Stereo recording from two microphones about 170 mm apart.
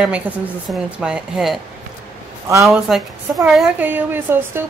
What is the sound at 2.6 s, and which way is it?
A woman's voice, centre (ahead or behind).